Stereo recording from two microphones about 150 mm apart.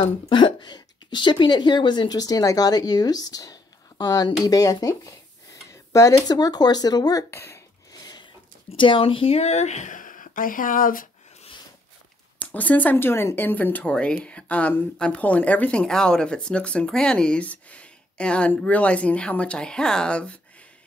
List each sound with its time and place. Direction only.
0.0 s speech: 30° left (ahead or behind)
7.2 s cough: 15° left (ahead or behind)
8.7 s speech: 35° left (ahead or behind); by 11.1 s 65° left (ahead or behind)
12.4 s speech: 10° left (ahead or behind)